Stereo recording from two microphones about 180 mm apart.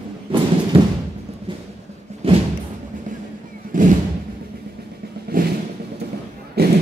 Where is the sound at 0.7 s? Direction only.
30° right (ahead or behind).